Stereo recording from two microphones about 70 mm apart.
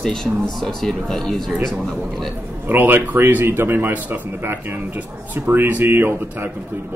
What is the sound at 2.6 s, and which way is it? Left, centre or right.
A man's voice, right.